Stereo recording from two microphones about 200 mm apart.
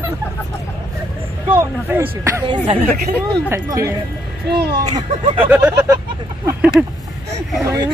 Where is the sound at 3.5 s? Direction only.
15° right (ahead or behind).